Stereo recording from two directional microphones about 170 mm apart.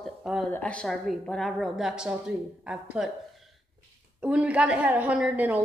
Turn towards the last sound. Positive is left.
turn(degrees=-10)  # may be behind; listen again after turning